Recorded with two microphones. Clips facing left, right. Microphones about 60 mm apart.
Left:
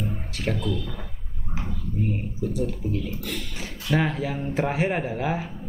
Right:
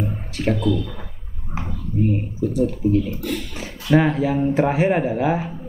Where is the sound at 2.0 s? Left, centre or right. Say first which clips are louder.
Right 7 dB; centre.